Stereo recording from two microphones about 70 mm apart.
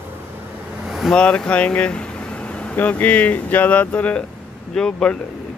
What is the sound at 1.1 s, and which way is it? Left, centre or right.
Speech, centre.